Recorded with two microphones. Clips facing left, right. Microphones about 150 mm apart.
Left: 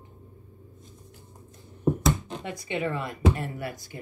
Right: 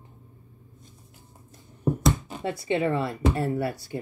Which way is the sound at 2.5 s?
30° right (ahead or behind).